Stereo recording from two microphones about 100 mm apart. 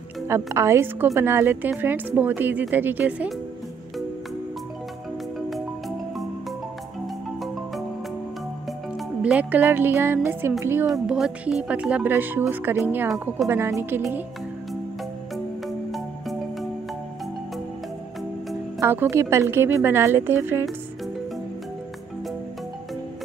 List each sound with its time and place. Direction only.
0.3 s a woman's voice: 30° right (ahead or behind)
5.5 s music: centre (ahead or behind)
9.2 s a woman's voice: 15° right (ahead or behind)
10.9 s a woman's voice: 5° right (ahead or behind); by 14.0 s 25° right (ahead or behind)
18.8 s a woman's voice: 25° right (ahead or behind)